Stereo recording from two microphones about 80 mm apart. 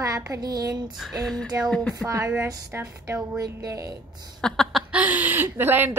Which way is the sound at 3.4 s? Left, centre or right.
Right.